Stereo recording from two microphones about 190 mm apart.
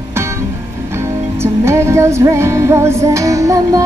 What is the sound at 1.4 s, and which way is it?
Music, 15° right (ahead or behind).